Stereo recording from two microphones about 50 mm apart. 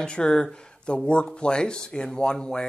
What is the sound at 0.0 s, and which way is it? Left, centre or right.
Speech, centre.